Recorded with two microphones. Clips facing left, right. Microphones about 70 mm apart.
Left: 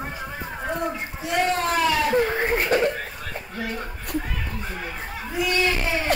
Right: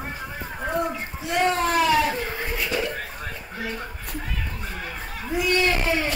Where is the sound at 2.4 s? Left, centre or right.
Left.